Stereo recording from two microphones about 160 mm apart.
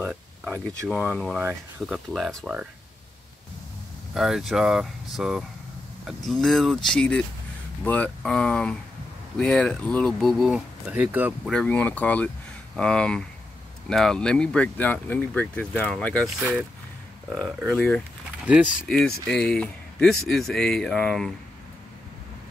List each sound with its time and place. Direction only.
0.0 s a sound: 5° right (ahead or behind)
0.7 s a man's voice: 10° left (ahead or behind)
1.4 s a man's voice: 5° right (ahead or behind)
4.1 s a man's voice: centre (ahead or behind)
11.4 s a man's voice: 5° left (ahead or behind)
17.3 s a man's voice: centre (ahead or behind)
18.5 s speech: 10° right (ahead or behind)
18.9 s a man's voice: 5° left (ahead or behind)